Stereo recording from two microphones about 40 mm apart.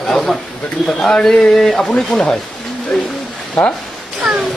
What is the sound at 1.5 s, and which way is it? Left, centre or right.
Speech, centre.